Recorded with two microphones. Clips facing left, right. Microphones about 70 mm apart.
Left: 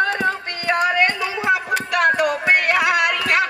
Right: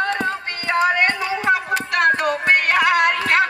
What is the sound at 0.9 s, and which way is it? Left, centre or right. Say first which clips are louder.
Music: even; right.